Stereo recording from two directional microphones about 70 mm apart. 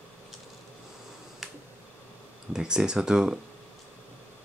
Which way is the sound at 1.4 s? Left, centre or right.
Centre.